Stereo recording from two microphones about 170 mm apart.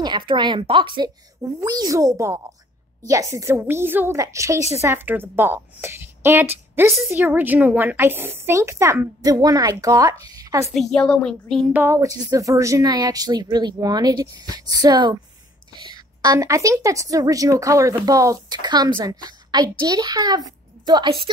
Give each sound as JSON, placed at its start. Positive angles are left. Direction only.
{"t": 0.0, "sound": "a woman's voice", "side_deg": -25}
{"t": 10.7, "sound": "speech", "side_deg": 0}
{"t": 11.7, "sound": "a woman's voice", "side_deg": -15}